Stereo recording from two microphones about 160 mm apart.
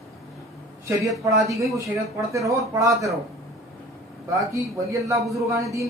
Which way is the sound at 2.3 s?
20° right (ahead or behind).